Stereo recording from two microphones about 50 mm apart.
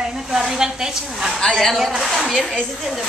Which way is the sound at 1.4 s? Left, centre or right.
Centre.